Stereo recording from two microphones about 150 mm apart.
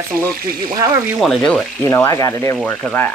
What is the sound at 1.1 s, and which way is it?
Speech, 5° left (ahead or behind).